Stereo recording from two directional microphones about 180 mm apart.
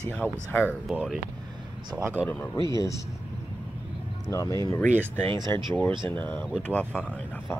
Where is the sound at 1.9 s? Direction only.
15° right (ahead or behind).